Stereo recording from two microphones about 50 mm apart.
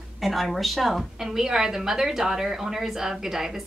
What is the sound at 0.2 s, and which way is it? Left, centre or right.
Speech, centre.